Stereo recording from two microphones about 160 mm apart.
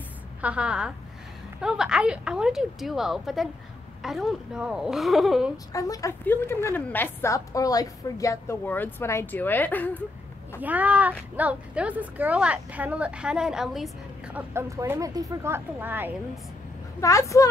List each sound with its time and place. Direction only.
0.4 s a woman's voice: 5° right (ahead or behind)
5.7 s a woman's voice: 20° left (ahead or behind)
10.6 s a woman's voice: 10° right (ahead or behind)
17.0 s speech: 20° left (ahead or behind)